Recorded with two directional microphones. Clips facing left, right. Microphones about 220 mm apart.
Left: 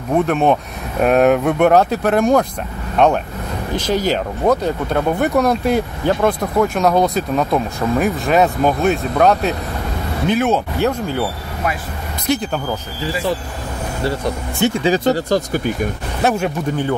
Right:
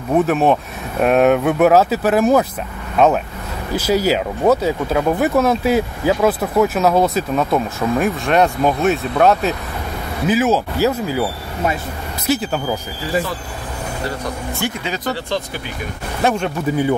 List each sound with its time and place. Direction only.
0.1 s speech: centre (ahead or behind)
12.3 s speech: 5° right (ahead or behind)
14.6 s speech: 25° left (ahead or behind); by 15.7 s 45° left (ahead or behind)
16.2 s speech: 5° left (ahead or behind)